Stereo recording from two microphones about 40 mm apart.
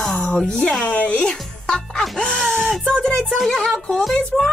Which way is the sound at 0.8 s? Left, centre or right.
Left.